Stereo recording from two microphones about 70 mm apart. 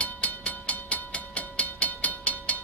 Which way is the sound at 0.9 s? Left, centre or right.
Centre.